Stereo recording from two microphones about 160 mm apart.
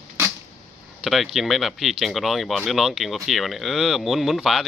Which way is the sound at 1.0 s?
Centre (ahead or behind).